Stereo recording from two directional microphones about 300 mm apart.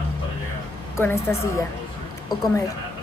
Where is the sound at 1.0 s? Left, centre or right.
Centre.